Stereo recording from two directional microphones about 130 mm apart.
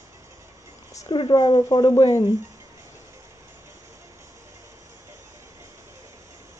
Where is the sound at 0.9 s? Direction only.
30° left (ahead or behind).